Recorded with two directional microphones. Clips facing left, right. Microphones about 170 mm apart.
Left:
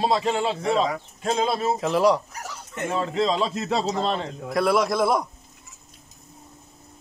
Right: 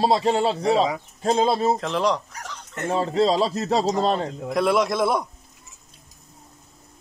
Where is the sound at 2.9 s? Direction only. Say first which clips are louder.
Right 4 dB; 35° right (ahead or behind).